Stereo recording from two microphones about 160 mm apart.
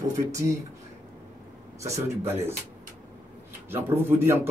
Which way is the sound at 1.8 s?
15° right (ahead or behind).